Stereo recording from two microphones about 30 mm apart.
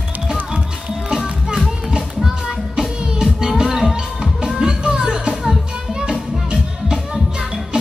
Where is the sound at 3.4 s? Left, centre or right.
Right.